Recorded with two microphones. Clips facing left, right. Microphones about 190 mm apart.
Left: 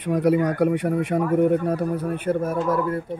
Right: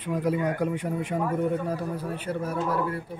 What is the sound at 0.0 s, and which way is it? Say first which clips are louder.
Speech: left 6 dB; 75° left (ahead or behind).